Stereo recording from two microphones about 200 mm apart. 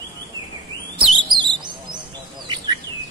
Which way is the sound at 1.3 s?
25° right (ahead or behind).